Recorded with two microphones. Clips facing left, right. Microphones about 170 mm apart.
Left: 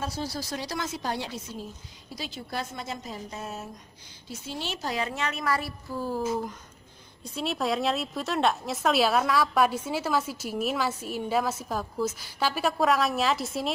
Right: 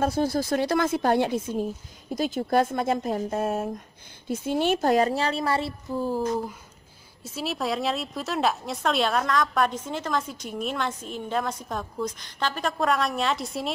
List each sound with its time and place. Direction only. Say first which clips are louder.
0.0 s a woman's voice: right 9 dB; 55° right (ahead or behind); by 6.2 s 15° right (ahead or behind)
7.2 s speech: even; centre (ahead or behind)